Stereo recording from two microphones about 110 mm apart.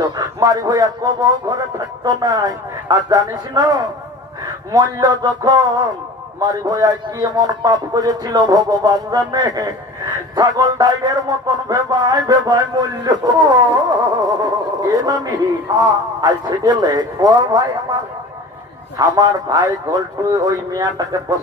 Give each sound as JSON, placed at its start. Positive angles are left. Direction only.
{"t": 0.0, "sound": "a man's voice", "side_deg": -40}
{"t": 18.9, "sound": "a man's voice", "side_deg": -35}